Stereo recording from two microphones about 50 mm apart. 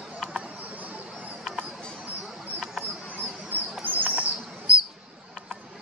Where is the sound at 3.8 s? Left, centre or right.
Right.